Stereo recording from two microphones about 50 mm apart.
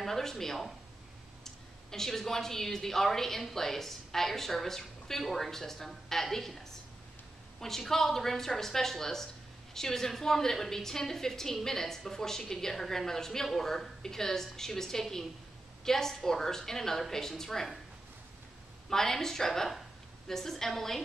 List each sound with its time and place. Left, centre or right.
0.0 s a woman's voice: centre
18.9 s a woman's voice: centre